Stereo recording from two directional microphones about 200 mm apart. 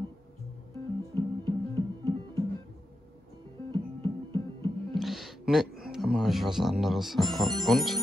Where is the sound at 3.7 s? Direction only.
25° right (ahead or behind).